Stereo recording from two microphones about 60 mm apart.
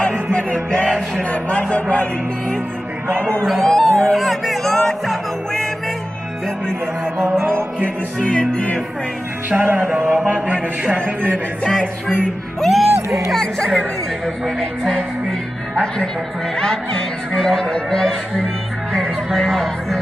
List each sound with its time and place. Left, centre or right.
0.3 s speech: left
3.2 s speech: centre
3.4 s speech: centre
4.0 s music: centre
7.2 s music: right
8.2 s speech: centre
9.6 s music: right
11.6 s speech: centre
12.6 s speech: centre
14.2 s speech: centre
16.5 s speech: centre